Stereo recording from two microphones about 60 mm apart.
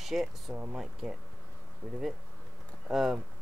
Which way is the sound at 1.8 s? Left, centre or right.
Right.